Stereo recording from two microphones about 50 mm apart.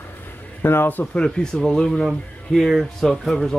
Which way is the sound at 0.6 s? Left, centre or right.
Left.